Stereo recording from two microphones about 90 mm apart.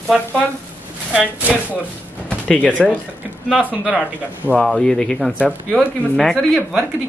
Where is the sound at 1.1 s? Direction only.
15° right (ahead or behind).